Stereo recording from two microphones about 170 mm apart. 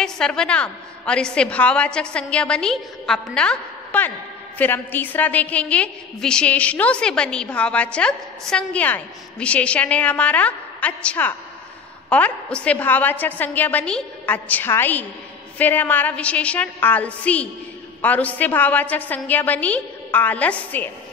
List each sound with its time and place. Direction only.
0.0 s a woman's voice: 5° left (ahead or behind)